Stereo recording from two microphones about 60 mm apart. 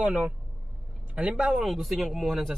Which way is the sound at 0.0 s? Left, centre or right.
Right.